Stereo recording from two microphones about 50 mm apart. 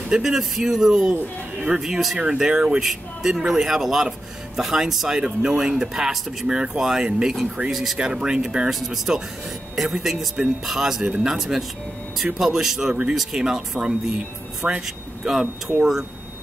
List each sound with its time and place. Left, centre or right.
0.1 s speech: centre
2.1 s speech: centre
7.7 s speech: centre
13.4 s speech: centre
14.6 s speech: right
15.2 s speech: centre